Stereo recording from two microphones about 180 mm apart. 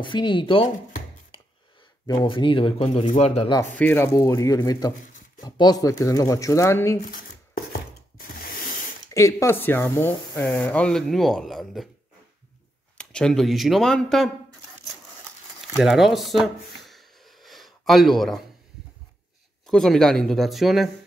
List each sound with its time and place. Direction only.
0.0 s speech: 25° left (ahead or behind)
2.0 s speech: 25° left (ahead or behind)
3.7 s speech: 10° left (ahead or behind)
7.5 s a sound: 55° left (ahead or behind)
9.1 s speech: 15° left (ahead or behind); by 11.9 s centre (ahead or behind)
12.9 s speech: 5° left (ahead or behind)
15.7 s a sound: centre (ahead or behind)
19.6 s speech: 5° left (ahead or behind)